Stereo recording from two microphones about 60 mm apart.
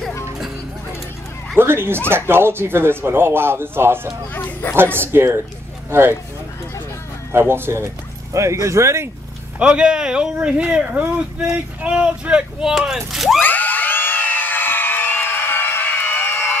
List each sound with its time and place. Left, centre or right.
1.6 s speech: right
4.3 s speech: left
4.9 s speech: right
7.3 s speech: right
9.6 s speech: centre
13.4 s a sound: left